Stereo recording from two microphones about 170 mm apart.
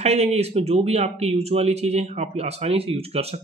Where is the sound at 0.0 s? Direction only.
40° right (ahead or behind).